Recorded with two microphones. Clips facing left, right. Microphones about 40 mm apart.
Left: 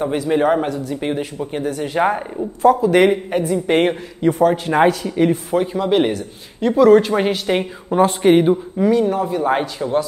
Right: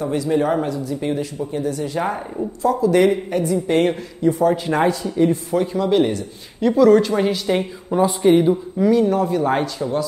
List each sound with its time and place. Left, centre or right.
0.0 s speech: left
4.2 s a man's voice: left
5.5 s speech: left
6.1 s speech: centre
8.0 s speech: left
8.7 s speech: centre
9.8 s speech: left